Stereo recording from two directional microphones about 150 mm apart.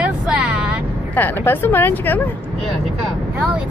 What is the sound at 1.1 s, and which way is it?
Speech, 15° left (ahead or behind).